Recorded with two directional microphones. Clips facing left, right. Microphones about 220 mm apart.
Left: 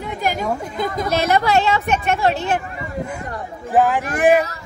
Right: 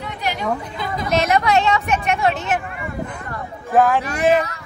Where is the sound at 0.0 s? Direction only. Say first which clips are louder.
Left 2 dB; 45° left (ahead or behind).